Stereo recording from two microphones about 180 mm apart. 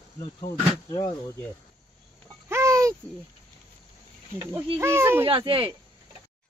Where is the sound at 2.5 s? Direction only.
15° right (ahead or behind).